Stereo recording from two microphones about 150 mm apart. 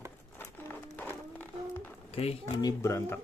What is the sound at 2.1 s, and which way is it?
Speech, 40° left (ahead or behind).